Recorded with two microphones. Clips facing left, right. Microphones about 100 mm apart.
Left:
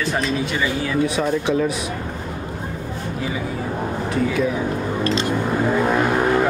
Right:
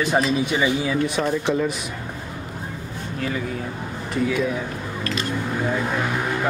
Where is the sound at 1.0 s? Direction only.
5° left (ahead or behind).